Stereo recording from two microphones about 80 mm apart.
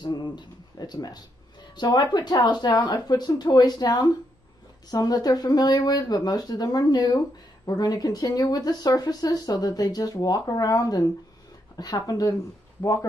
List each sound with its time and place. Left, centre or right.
0.0 s speech: left